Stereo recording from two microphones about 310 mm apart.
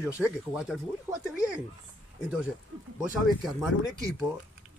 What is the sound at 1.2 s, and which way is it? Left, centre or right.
Speech, centre.